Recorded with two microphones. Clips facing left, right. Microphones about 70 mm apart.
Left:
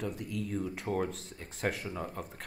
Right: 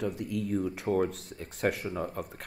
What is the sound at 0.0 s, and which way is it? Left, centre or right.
Speech, right.